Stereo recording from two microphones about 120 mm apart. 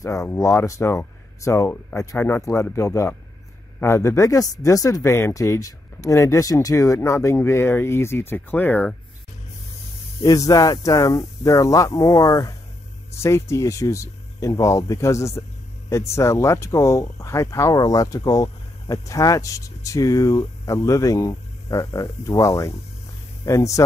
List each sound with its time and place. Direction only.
0.0 s speech: 25° left (ahead or behind)
10.2 s speech: 30° left (ahead or behind)